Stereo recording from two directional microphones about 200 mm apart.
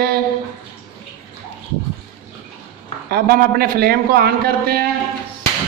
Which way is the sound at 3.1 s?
50° right (ahead or behind).